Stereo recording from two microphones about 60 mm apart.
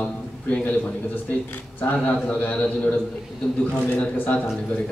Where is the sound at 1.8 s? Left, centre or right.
Left.